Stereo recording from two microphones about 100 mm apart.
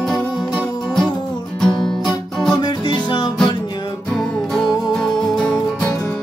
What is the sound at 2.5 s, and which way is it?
Music, 45° left (ahead or behind).